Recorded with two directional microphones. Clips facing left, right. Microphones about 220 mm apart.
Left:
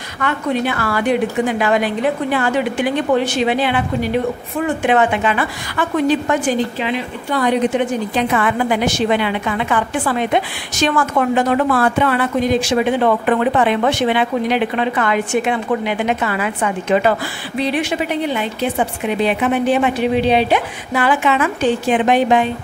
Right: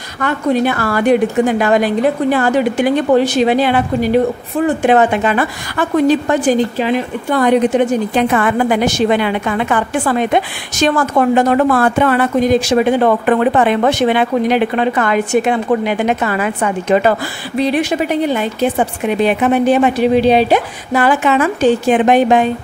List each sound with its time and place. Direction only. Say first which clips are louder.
0.2 s a woman's voice: right 4 dB; 40° right (ahead or behind)